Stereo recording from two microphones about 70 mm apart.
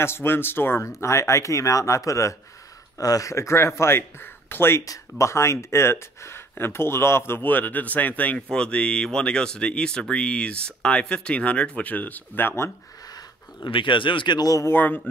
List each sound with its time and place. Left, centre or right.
0.0 s speech: left
0.8 s speech: left
14.2 s speech: left
14.6 s speech: left